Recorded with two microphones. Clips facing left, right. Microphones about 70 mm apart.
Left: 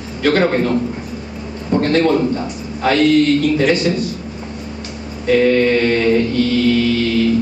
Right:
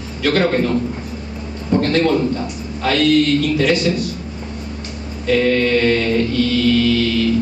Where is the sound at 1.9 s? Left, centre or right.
Left.